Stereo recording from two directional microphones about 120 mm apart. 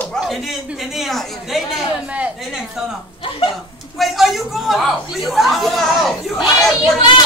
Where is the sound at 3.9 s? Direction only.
Centre (ahead or behind).